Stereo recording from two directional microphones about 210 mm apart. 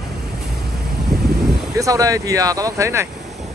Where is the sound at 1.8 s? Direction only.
15° right (ahead or behind).